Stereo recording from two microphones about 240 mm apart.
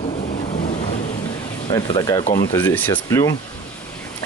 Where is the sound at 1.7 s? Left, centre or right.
Centre.